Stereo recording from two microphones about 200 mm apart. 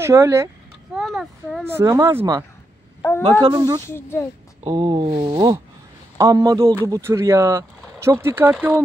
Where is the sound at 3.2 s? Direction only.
20° right (ahead or behind).